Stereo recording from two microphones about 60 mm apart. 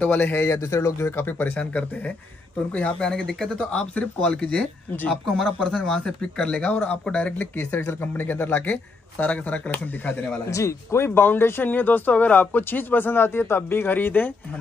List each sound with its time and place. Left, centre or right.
0.0 s speech: left
0.5 s speech: left
1.4 s speech: left
5.2 s speech: centre; by 10.4 s left
10.4 s speech: left
11.1 s speech: left